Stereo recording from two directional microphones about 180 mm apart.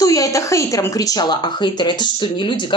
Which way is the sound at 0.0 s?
20° left (ahead or behind).